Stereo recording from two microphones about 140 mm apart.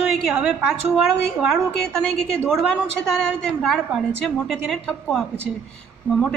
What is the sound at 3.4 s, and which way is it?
A woman's voice, 5° left (ahead or behind).